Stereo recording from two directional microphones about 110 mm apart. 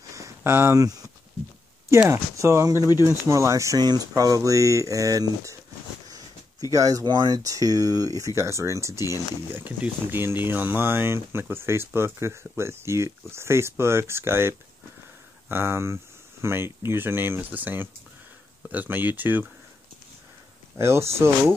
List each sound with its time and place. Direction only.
0.1 s a sound: 30° right (ahead or behind)
1.9 s speech: 25° right (ahead or behind)
2.7 s speech: 30° left (ahead or behind)
3.0 s speech: 25° right (ahead or behind)
6.7 s speech: 30° right (ahead or behind)
9.5 s speech: 15° right (ahead or behind)
20.7 s speech: 25° right (ahead or behind)